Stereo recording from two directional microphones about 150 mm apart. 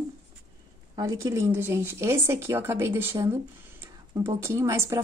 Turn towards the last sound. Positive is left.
turn(degrees=-15)  # may be behind; listen again after turning